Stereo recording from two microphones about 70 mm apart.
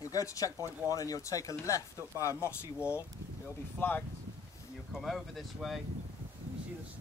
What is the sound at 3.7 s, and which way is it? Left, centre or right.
Speech, left.